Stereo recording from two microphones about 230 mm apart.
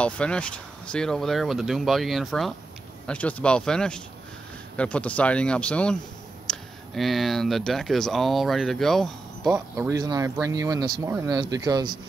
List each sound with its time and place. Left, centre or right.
0.0 s speech: centre
6.5 s a sound: centre
7.0 s speech: centre
9.8 s speech: centre